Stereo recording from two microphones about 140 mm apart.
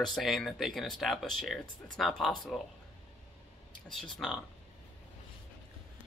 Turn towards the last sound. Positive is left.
turn(degrees=0)  # may be behind; listen again after turning